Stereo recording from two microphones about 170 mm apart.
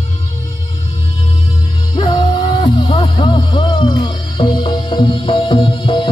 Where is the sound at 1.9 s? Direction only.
25° left (ahead or behind).